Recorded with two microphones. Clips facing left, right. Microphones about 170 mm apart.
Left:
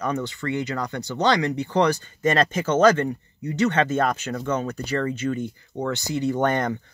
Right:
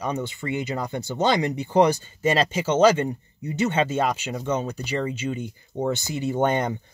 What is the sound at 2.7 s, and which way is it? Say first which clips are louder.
Speech: even; 20° right (ahead or behind).